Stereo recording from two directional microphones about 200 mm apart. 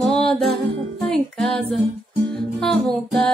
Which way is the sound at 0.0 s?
5° left (ahead or behind).